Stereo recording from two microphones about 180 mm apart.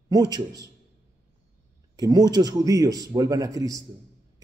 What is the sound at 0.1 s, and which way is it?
Speech, 20° right (ahead or behind).